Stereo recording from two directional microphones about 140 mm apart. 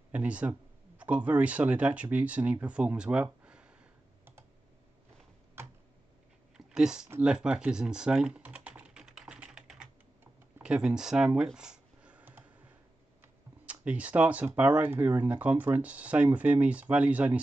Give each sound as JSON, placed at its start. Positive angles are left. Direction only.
{"t": 0.1, "sound": "speech", "side_deg": -10}
{"t": 5.6, "sound": "computer keyboard", "side_deg": -15}
{"t": 6.5, "sound": "a sound", "side_deg": -5}
{"t": 7.1, "sound": "typing", "side_deg": -10}
{"t": 10.6, "sound": "computer keyboard", "side_deg": -5}
{"t": 13.7, "sound": "speech", "side_deg": -10}